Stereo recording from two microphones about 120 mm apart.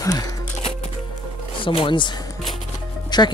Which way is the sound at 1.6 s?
45° left (ahead or behind).